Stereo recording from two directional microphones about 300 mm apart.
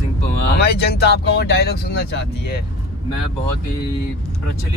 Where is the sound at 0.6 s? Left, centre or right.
Left.